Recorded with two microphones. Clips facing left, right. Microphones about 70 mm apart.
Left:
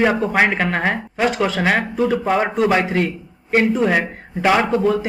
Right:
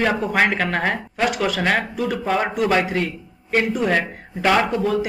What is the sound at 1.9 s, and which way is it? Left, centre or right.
A man's voice, left.